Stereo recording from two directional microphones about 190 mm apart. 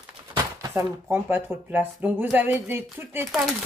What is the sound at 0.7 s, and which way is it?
Speech, 10° right (ahead or behind).